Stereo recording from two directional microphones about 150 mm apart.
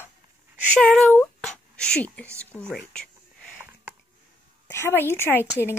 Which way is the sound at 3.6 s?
10° right (ahead or behind).